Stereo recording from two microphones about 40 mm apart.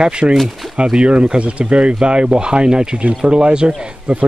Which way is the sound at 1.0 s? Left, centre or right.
Right.